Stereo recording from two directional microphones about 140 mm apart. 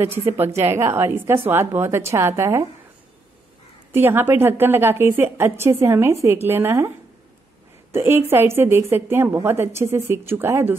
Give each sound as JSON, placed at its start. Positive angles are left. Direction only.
{"t": 0.0, "sound": "a woman's voice", "side_deg": -15}
{"t": 3.9, "sound": "a woman's voice", "side_deg": -15}
{"t": 7.9, "sound": "a woman's voice", "side_deg": -20}